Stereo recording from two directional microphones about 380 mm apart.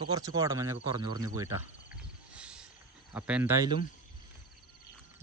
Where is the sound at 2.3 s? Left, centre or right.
Centre.